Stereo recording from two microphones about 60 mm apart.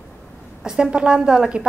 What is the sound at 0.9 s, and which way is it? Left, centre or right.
Speech, centre.